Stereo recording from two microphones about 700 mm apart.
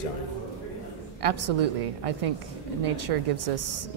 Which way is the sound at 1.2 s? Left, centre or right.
Right.